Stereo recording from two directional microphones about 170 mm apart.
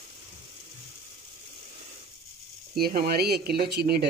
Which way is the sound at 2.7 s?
65° right (ahead or behind).